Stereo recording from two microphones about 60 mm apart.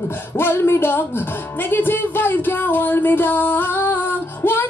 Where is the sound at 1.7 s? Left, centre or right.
Left.